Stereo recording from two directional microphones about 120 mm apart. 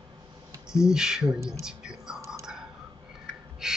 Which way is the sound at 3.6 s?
5° right (ahead or behind).